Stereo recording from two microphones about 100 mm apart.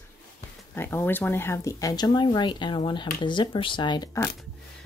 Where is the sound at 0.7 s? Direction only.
20° left (ahead or behind); by 4.1 s 50° left (ahead or behind).